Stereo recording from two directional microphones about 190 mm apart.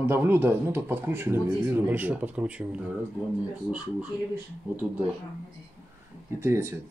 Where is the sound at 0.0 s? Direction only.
10° right (ahead or behind).